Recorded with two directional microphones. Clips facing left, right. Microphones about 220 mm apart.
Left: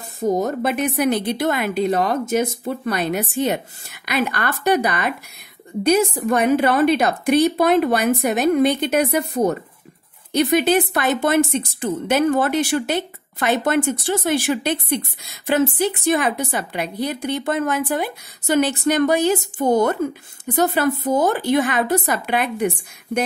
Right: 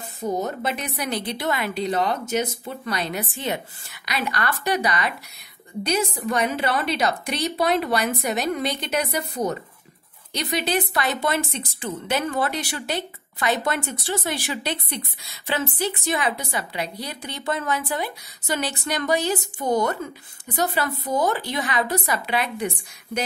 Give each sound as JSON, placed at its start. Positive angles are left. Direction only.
{"t": 0.2, "sound": "a woman's voice", "side_deg": 45}